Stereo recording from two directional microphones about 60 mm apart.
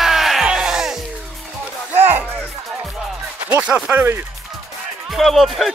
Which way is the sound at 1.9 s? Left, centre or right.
Right.